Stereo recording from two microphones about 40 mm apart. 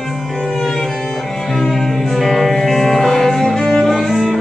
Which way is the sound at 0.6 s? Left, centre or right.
Centre.